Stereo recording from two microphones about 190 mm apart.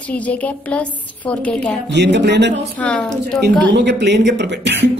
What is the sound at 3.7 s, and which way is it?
Speech, 65° right (ahead or behind).